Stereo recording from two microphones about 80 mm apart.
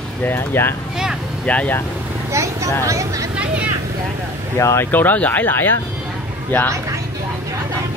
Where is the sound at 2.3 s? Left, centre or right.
Right.